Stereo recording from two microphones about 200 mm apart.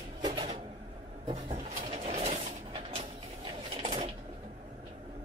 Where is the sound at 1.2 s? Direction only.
30° right (ahead or behind).